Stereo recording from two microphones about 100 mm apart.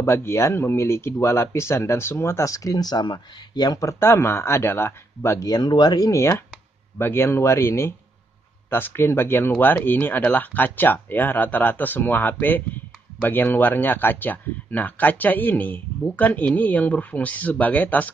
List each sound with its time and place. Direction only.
0.0 s speech: 25° left (ahead or behind)
4.0 s speech: 25° left (ahead or behind)
5.5 s speech: 45° left (ahead or behind); by 18.1 s 15° left (ahead or behind)